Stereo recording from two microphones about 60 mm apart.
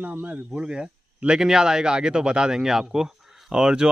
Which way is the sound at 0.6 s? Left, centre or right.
Centre.